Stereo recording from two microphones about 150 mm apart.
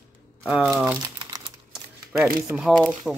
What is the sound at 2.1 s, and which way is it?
Speech, 5° right (ahead or behind).